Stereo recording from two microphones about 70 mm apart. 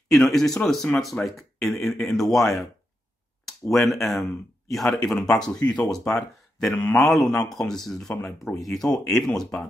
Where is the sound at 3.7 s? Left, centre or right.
Centre.